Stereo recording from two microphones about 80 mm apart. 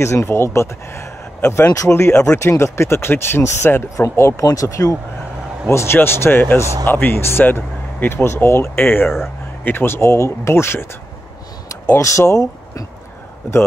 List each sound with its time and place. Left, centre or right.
0.0 s speech: left
1.7 s speech: left
5.7 s speech: left
11.9 s speech: left